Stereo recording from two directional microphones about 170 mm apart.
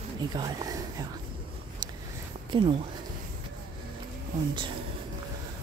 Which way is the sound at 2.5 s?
30° right (ahead or behind).